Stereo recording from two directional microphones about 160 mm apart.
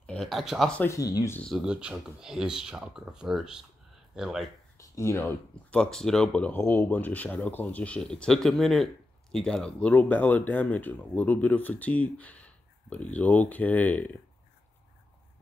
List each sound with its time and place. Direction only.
0.0 s speech: 5° left (ahead or behind)
0.8 s speech: 20° left (ahead or behind)
1.4 s speech: centre (ahead or behind)
4.9 s speech: 15° left (ahead or behind)